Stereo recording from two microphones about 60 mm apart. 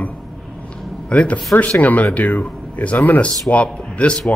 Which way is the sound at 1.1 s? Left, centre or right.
Left.